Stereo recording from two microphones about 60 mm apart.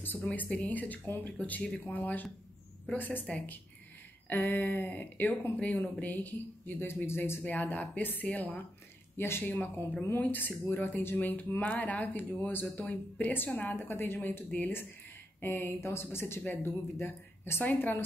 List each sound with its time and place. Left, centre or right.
0.0 s speech: left
4.3 s speech: left
7.4 s speech: left
9.1 s speech: left